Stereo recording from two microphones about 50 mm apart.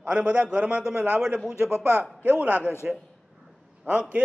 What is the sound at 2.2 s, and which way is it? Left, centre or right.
Speech, right.